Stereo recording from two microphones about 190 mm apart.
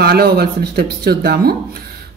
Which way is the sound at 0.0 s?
55° right (ahead or behind).